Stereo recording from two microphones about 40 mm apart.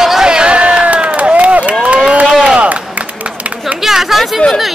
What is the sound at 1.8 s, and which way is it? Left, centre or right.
Run, right.